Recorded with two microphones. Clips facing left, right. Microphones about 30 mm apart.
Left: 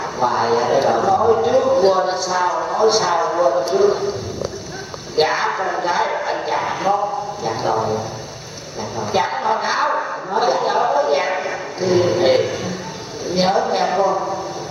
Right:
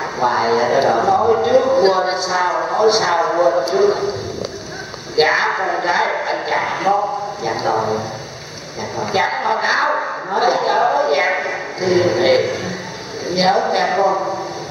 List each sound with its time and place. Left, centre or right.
0.0 s a man's voice: centre
5.1 s a man's voice: right
8.9 s a man's voice: right
11.5 s a sound: right
13.3 s speech: right